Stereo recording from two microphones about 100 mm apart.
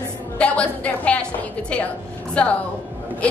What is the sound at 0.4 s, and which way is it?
Speech, 10° left (ahead or behind).